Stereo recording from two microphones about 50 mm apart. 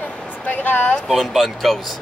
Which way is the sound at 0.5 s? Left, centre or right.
Left.